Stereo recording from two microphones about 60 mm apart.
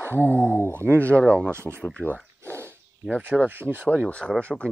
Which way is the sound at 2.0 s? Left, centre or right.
Right.